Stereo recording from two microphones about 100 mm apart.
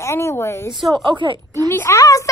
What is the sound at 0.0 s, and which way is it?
Speech, 30° left (ahead or behind).